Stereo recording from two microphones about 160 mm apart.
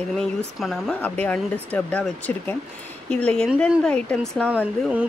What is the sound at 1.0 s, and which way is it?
Speech, 10° left (ahead or behind).